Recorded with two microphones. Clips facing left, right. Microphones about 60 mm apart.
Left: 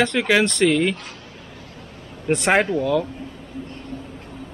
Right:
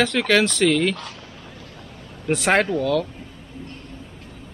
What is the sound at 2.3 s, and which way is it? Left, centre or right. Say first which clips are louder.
Speech: left 1 dB; centre.